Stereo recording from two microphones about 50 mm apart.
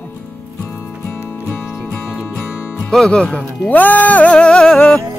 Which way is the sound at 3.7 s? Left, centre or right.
Left.